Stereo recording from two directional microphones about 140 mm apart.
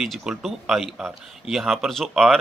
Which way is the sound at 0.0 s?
Centre (ahead or behind).